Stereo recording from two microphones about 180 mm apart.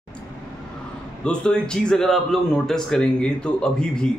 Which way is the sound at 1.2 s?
5° left (ahead or behind).